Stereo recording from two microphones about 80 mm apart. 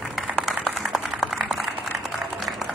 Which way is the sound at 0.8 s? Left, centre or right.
Centre.